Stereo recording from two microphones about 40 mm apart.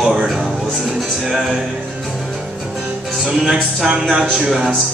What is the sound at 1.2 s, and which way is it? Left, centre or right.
Music, centre.